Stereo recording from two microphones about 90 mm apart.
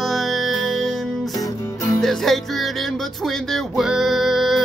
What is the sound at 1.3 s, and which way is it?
Music, 40° left (ahead or behind).